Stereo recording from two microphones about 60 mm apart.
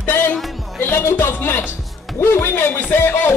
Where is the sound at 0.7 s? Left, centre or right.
Left.